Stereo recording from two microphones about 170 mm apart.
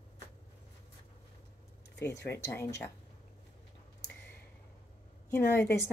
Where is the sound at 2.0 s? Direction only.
15° left (ahead or behind).